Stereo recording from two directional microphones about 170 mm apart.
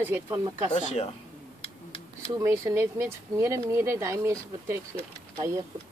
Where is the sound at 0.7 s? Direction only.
40° left (ahead or behind).